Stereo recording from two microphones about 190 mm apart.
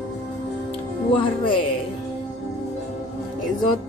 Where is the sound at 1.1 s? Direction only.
25° left (ahead or behind).